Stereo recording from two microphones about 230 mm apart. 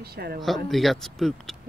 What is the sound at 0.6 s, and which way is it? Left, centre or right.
Speech, centre.